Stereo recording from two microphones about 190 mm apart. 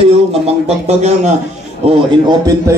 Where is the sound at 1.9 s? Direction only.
20° right (ahead or behind).